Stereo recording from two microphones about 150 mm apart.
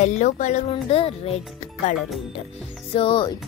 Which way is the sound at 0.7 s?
40° left (ahead or behind).